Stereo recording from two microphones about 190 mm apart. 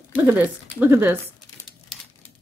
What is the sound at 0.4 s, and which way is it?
Speech, 10° right (ahead or behind).